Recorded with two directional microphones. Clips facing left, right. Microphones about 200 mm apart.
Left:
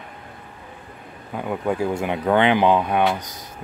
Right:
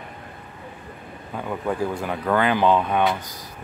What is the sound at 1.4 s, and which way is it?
Speech, 15° left (ahead or behind).